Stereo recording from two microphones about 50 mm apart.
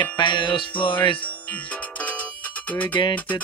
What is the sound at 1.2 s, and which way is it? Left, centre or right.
Music, left.